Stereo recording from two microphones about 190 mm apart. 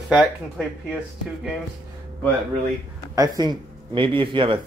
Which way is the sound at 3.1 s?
20° right (ahead or behind).